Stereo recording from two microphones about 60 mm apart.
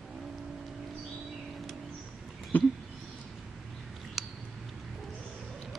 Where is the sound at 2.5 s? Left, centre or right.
Left.